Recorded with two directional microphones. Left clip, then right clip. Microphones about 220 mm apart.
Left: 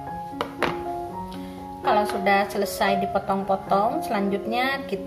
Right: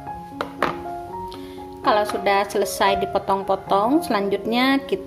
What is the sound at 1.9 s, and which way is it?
A woman's voice, 40° right (ahead or behind).